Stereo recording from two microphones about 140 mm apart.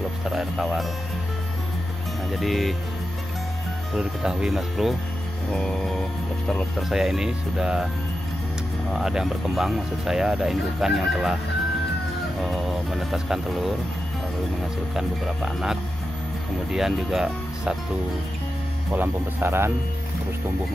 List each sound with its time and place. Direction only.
0.3 s speech: 5° right (ahead or behind)
2.3 s speech: centre (ahead or behind)
3.9 s speech: 5° right (ahead or behind)
8.9 s speech: 5° right (ahead or behind)
12.4 s speech: centre (ahead or behind)
15.0 s speech: 5° right (ahead or behind)
18.9 s speech: 15° right (ahead or behind)